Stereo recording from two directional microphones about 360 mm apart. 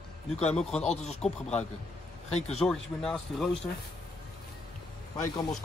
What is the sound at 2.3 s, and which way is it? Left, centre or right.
Speech, centre.